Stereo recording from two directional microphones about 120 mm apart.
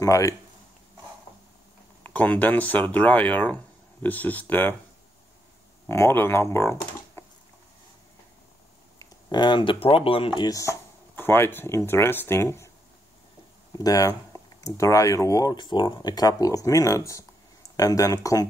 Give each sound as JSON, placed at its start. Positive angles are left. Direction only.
{"t": 0.0, "sound": "speech", "side_deg": 25}
{"t": 2.0, "sound": "speech", "side_deg": 15}
{"t": 5.9, "sound": "speech", "side_deg": 20}
{"t": 9.0, "sound": "speech", "side_deg": 40}
{"t": 10.5, "sound": "speech", "side_deg": 25}
{"t": 13.7, "sound": "speech", "side_deg": 30}